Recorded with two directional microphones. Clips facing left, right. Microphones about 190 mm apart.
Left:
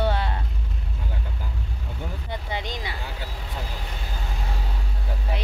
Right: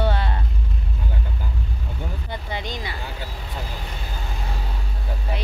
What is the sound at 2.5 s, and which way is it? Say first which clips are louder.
Vehicle: right 1 dB; 20° left (ahead or behind).